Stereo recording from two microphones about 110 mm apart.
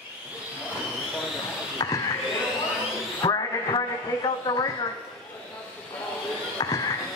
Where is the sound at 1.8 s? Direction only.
35° left (ahead or behind).